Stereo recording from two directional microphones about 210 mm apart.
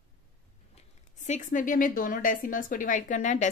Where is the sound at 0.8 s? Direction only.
35° left (ahead or behind).